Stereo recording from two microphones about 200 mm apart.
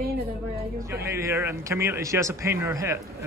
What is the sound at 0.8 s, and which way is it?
Speech, 15° right (ahead or behind).